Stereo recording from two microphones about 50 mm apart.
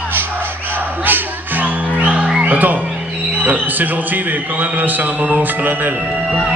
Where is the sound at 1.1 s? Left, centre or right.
Right.